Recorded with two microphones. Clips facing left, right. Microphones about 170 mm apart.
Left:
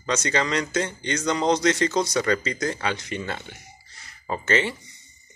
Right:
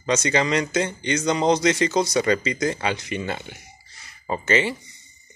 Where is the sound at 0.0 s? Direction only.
15° right (ahead or behind).